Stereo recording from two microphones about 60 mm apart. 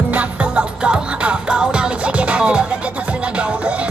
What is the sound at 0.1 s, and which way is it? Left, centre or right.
Music, right.